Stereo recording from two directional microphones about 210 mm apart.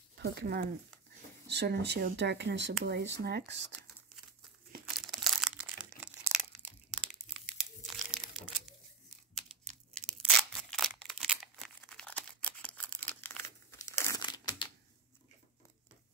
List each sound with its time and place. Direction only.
0.2 s speech: 50° right (ahead or behind)
4.8 s crushing: centre (ahead or behind)
7.2 s crumpling: 5° right (ahead or behind)
9.3 s a sound: 5° left (ahead or behind); by 14.7 s 20° left (ahead or behind)